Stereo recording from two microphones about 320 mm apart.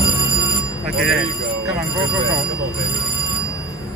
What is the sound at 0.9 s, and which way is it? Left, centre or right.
Speech, centre.